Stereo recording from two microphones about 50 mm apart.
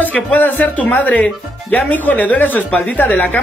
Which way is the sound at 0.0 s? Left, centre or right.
Left.